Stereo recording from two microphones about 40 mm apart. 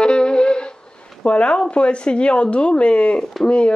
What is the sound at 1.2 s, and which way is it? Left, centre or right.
Speech, left.